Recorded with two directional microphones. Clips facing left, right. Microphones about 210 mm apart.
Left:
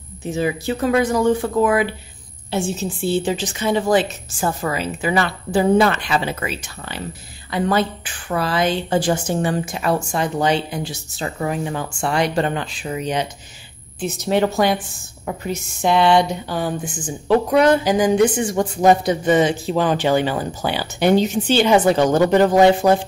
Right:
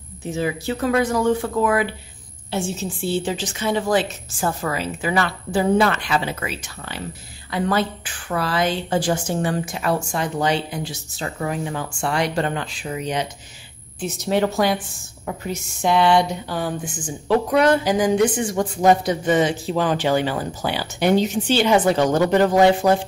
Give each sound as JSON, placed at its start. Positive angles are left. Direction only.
{"t": 0.4, "sound": "a woman's voice", "side_deg": 15}
{"t": 15.8, "sound": "a woman's voice", "side_deg": 25}